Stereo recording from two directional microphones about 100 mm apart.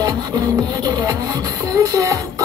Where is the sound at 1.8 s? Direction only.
35° right (ahead or behind).